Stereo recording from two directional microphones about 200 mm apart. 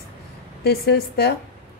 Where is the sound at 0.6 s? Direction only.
55° left (ahead or behind).